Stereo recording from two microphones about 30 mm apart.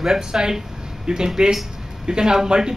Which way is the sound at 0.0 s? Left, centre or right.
Centre.